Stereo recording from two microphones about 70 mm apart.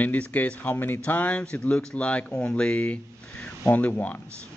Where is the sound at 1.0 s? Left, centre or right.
Left.